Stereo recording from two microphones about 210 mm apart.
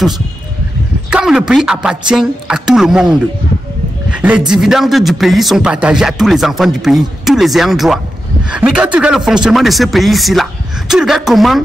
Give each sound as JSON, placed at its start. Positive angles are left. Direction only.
{"t": 1.1, "sound": "a man's voice", "side_deg": -5}